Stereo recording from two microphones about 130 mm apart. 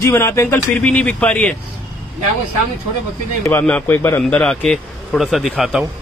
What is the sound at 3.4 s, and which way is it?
Speech, 15° left (ahead or behind).